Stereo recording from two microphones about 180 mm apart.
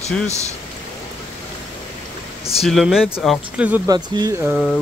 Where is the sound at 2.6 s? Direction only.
Centre (ahead or behind).